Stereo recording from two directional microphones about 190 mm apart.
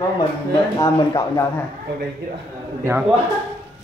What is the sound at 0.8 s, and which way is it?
Speech, 15° left (ahead or behind).